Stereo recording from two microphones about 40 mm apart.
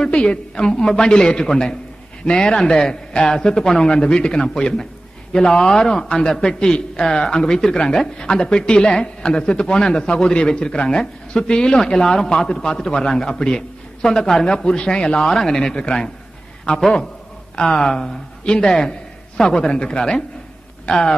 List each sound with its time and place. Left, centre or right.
0.0 s a man's voice: left
18.4 s a man's voice: left
19.7 s a man's voice: left
20.0 s speech: centre